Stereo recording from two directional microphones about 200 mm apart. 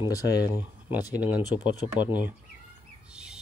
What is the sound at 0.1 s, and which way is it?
Speech, 15° left (ahead or behind).